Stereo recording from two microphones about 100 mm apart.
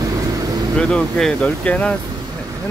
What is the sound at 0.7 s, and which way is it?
Speech, 10° left (ahead or behind).